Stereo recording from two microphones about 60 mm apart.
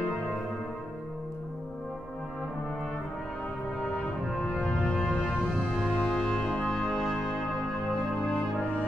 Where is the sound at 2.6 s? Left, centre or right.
Centre.